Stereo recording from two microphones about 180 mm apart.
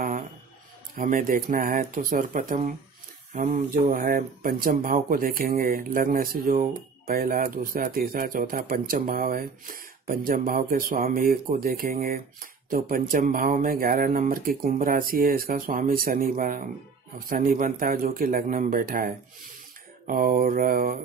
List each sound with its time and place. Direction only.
0.9 s speech: 50° right (ahead or behind)